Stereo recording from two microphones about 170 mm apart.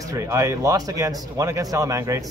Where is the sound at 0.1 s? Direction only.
20° right (ahead or behind).